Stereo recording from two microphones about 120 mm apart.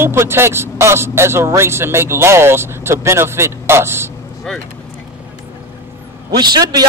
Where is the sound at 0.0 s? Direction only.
20° right (ahead or behind).